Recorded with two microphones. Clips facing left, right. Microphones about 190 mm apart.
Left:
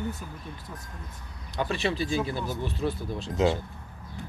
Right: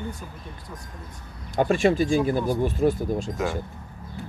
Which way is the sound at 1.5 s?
45° right (ahead or behind).